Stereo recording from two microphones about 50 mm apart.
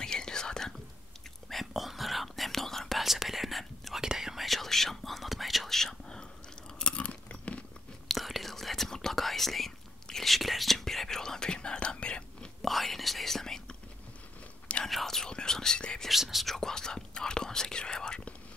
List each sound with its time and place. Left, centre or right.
0.0 s whispering: centre
1.5 s whispering: centre
4.0 s whispering: centre
6.8 s chewing: left
8.1 s whispering: centre
12.6 s whispering: centre
14.9 s whispering: centre
16.1 s speech: centre
16.5 s speech: centre